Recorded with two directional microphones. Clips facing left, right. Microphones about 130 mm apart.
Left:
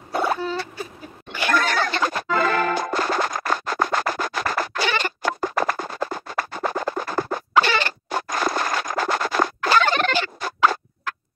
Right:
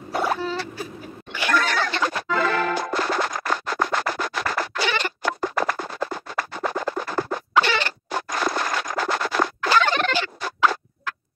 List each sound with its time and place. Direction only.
1.3 s music: 45° left (ahead or behind)